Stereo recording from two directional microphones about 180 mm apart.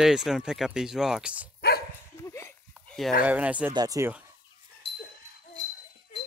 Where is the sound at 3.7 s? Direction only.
20° right (ahead or behind).